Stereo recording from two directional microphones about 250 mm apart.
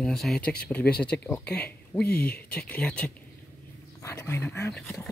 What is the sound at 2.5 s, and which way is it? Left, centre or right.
Speech, centre.